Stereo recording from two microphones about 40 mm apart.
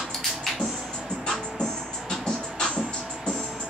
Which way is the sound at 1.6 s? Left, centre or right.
Centre.